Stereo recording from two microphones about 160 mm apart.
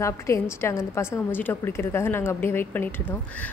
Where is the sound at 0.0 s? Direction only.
15° left (ahead or behind).